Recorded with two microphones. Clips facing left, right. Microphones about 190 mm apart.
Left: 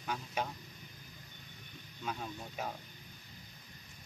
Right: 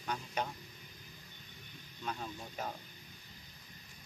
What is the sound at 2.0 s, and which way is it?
Speech, 5° left (ahead or behind).